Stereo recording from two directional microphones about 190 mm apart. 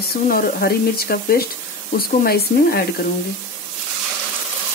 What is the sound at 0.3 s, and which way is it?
Speech, 55° left (ahead or behind).